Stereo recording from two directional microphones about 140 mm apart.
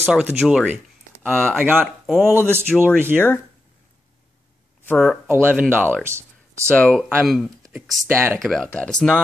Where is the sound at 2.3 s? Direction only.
15° right (ahead or behind).